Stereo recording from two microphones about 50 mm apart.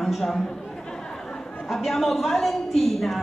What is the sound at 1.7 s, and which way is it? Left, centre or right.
Speech, centre.